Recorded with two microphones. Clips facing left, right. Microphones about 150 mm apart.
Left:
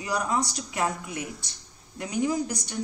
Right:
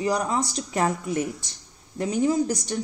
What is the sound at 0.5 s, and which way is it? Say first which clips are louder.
Speech: right 4 dB; 40° right (ahead or behind).